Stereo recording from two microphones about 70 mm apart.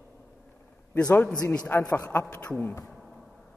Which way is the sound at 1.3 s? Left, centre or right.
Centre.